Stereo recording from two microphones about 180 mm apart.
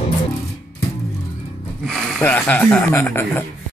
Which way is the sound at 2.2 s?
10° left (ahead or behind).